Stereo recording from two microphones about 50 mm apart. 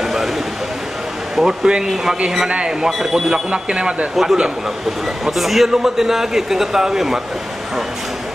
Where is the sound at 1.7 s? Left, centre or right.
Centre.